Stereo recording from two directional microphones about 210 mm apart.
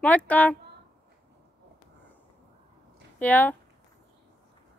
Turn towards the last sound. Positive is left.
turn(degrees=10)  # may be behind; listen again after turning